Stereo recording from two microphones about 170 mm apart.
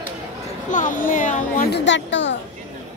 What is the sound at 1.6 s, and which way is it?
Speech, 85° left.